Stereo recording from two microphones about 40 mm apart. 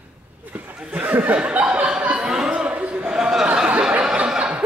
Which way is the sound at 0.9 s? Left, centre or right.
Right.